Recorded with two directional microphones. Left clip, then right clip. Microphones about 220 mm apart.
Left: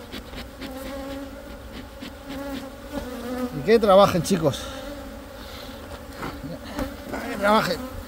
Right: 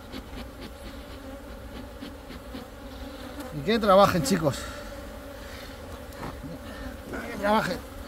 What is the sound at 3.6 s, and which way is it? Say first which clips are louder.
Speech: left 4 dB; 20° left (ahead or behind).